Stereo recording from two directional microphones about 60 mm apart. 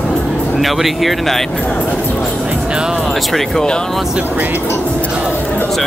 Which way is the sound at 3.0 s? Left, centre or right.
Centre.